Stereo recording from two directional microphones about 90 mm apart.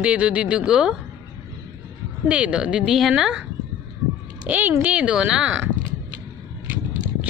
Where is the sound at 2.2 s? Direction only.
15° right (ahead or behind).